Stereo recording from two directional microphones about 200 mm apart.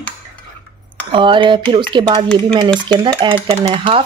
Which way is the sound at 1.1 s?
25° right (ahead or behind).